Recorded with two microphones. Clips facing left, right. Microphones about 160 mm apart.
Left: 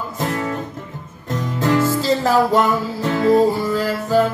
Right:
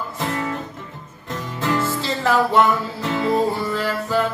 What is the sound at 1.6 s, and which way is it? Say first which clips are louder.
Music: left 5 dB; 40° left (ahead or behind).